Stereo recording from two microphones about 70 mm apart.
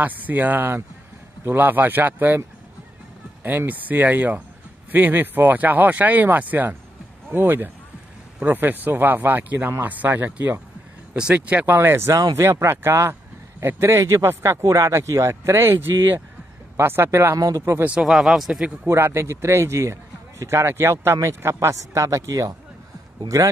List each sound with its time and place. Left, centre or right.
0.0 s speech: right
3.4 s speech: right
11.7 s speech: right
17.4 s speech: right
18.0 s speech: centre
18.9 s a man's voice: right